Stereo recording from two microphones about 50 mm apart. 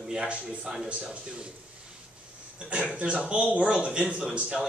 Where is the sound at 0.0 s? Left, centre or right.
Centre.